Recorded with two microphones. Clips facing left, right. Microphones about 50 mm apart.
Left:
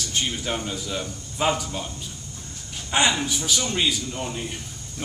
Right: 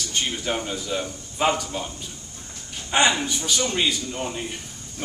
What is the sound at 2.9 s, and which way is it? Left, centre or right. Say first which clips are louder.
A man's voice: right 2 dB; centre.